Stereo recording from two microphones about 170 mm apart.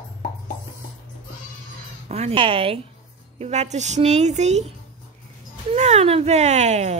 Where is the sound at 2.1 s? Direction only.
35° right (ahead or behind).